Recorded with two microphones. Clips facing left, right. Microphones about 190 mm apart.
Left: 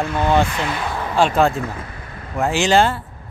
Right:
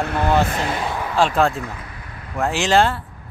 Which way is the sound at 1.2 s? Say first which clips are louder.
Left 2 dB; centre (ahead or behind).